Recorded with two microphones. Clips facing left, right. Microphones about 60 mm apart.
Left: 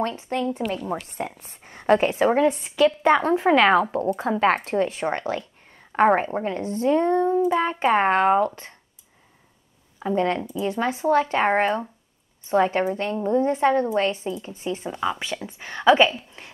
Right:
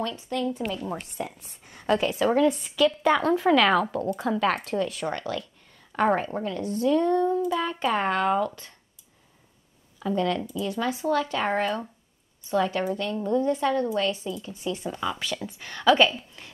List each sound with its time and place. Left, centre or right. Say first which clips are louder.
0.0 s speech: left 3 dB; left
9.9 s speech: left 3 dB; left
16.4 s a sound: left 3 dB; left